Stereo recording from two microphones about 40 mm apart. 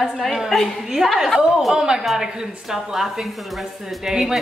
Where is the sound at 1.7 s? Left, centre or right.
Centre.